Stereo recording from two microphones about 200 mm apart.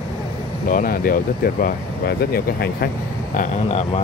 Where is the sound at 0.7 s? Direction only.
45° left (ahead or behind).